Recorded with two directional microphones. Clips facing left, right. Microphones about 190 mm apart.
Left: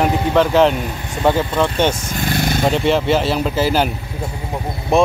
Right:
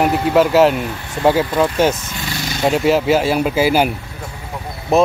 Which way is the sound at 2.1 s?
50° left (ahead or behind).